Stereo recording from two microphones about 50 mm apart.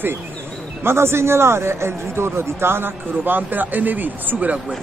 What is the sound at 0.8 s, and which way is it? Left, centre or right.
A man's voice, right.